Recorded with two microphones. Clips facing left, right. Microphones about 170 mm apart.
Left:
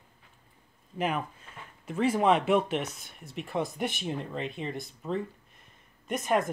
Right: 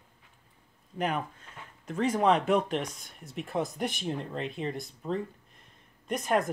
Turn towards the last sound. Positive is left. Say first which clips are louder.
# even
turn(degrees=0)  # may be behind; listen again after turning